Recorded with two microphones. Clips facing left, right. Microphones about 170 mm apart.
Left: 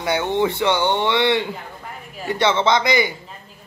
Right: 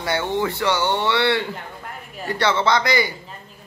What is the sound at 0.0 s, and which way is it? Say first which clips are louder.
Speech: left 3 dB; 15° left (ahead or behind).